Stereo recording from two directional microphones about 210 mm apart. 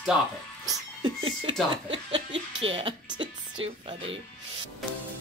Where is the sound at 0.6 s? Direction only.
20° right (ahead or behind).